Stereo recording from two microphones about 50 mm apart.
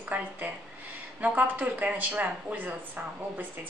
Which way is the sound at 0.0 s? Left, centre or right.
Right.